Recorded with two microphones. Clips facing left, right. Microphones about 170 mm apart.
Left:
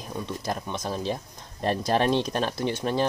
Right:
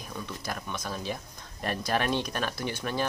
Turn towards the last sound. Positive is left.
turn(degrees=25)  # may be behind; listen again after turning